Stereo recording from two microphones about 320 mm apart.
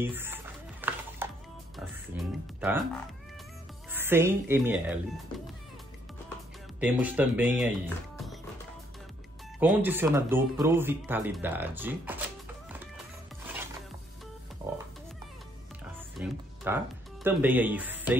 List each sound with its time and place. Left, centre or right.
0.0 s telephone dialing: centre
1.8 s music: centre
3.9 s speech: centre
6.8 s speech: centre
9.6 s speech: centre
16.2 s music: centre
17.2 s speech: centre